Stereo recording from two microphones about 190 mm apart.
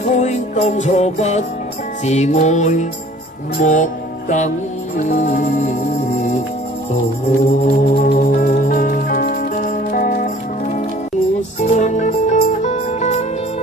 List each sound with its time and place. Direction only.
0.1 s music: 40° left (ahead or behind)
7.6 s music: 45° left (ahead or behind)